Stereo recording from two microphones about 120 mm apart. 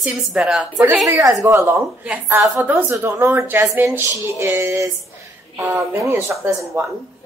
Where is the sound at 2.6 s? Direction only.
15° right (ahead or behind).